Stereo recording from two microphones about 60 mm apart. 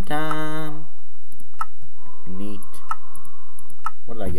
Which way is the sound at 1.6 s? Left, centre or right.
Centre.